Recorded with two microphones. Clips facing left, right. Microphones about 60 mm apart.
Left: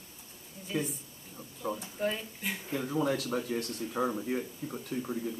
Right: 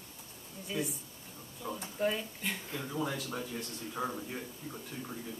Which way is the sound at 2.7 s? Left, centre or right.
Centre.